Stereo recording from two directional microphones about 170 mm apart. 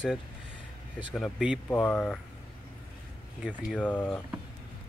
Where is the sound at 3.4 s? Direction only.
5° left (ahead or behind).